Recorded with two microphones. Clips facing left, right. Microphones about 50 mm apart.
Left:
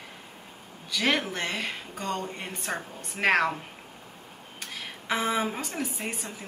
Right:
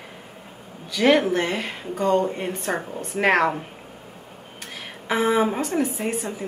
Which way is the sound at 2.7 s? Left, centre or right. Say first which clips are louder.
Right 9 dB; centre.